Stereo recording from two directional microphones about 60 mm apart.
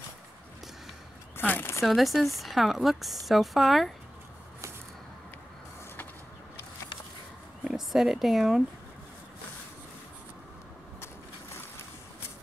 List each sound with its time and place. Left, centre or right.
1.3 s speech: left
1.9 s speech: centre
7.6 s speech: centre